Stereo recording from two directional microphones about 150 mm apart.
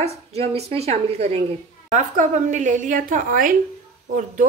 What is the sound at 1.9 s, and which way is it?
A woman's voice, 55° right (ahead or behind).